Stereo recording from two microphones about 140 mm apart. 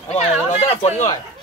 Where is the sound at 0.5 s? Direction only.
45° left (ahead or behind).